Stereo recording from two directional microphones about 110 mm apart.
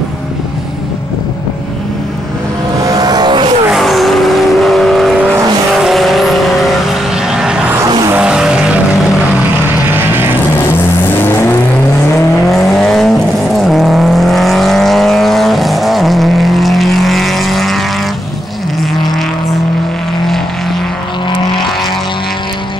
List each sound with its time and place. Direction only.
2.8 s vehicle: 35° right (ahead or behind)
3.7 s vehicle: centre (ahead or behind)
9.8 s vehicle: 20° right (ahead or behind)
11.2 s vehicle: 20° left (ahead or behind)
12.4 s vehicle: centre (ahead or behind)